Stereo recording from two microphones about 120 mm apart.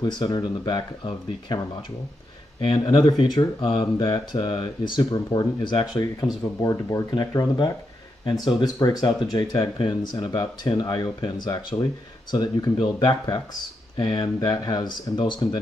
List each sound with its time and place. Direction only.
0.0 s speech: 35° left (ahead or behind)
2.6 s speech: 40° left (ahead or behind)